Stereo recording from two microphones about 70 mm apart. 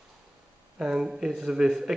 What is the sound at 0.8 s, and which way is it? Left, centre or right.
Speech, centre.